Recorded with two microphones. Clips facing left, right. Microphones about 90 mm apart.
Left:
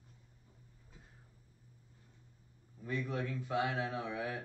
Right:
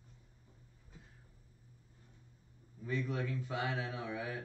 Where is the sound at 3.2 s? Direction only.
20° left (ahead or behind).